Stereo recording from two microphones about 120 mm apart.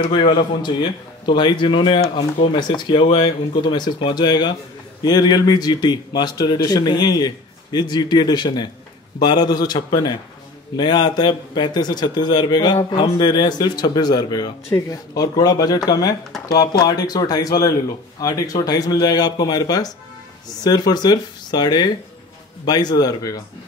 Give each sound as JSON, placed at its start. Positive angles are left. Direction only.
{"t": 0.0, "sound": "speech", "side_deg": 40}